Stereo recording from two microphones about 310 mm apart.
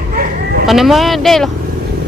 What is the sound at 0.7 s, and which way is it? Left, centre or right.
Speech, centre.